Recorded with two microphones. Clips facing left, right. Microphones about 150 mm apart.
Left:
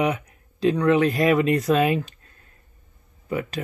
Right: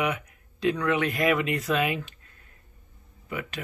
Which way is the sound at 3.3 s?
35° left (ahead or behind).